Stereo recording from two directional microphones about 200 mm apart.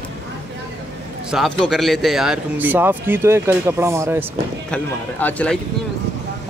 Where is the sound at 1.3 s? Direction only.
Centre (ahead or behind).